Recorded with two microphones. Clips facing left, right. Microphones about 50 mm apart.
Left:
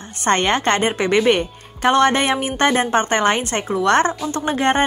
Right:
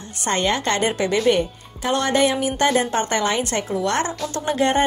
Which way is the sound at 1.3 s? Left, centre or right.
Left.